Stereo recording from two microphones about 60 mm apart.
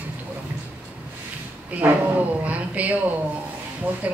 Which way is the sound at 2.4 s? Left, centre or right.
Right.